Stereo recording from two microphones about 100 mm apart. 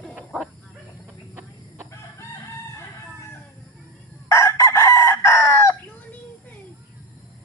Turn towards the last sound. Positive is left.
turn(degrees=25)  # may be behind; listen again after turning